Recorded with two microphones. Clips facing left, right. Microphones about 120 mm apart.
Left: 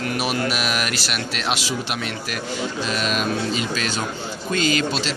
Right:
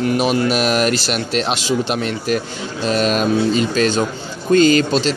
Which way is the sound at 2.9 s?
40° right (ahead or behind).